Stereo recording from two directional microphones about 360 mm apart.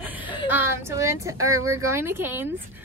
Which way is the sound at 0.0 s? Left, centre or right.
Centre.